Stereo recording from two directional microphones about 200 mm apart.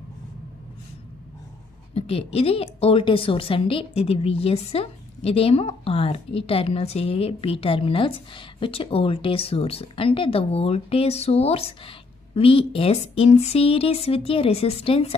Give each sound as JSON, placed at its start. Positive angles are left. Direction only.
{"t": 2.0, "sound": "a woman's voice", "side_deg": 30}